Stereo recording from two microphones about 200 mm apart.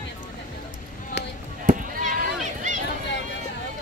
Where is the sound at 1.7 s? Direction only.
40° right (ahead or behind).